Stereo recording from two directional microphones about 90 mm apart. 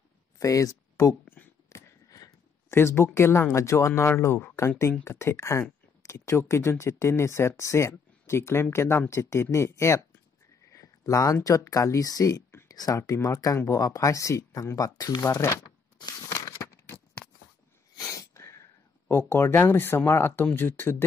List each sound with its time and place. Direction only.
0.4 s speech: 40° left (ahead or behind)
1.2 s a sound: 20° left (ahead or behind)
1.7 s a sound: 35° left (ahead or behind)
2.7 s speech: 30° left (ahead or behind)
10.7 s a sound: 40° left (ahead or behind)
11.4 s speech: 40° left (ahead or behind)
15.2 s speech: 35° left (ahead or behind)
16.0 s tearing: 40° left (ahead or behind)
17.9 s speech: 40° left (ahead or behind); by 21.0 s 25° left (ahead or behind)